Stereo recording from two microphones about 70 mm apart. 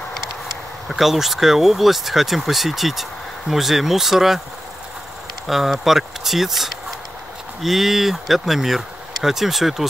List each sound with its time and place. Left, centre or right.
0.8 s speech: centre
5.5 s speech: centre